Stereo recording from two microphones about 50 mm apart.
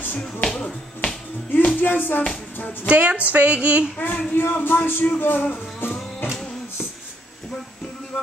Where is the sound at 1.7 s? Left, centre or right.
Left.